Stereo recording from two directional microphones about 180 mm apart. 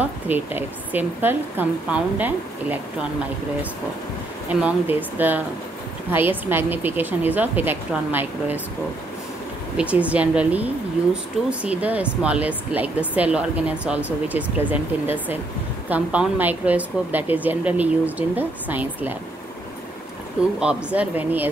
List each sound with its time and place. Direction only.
0.0 s a woman's voice: 10° right (ahead or behind)
4.5 s a woman's voice: 10° right (ahead or behind)
9.8 s a woman's voice: 5° right (ahead or behind)
20.5 s a woman's voice: 5° right (ahead or behind)